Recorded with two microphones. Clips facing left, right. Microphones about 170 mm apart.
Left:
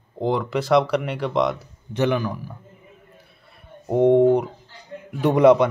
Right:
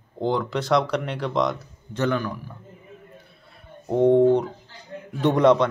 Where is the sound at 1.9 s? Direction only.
15° left (ahead or behind).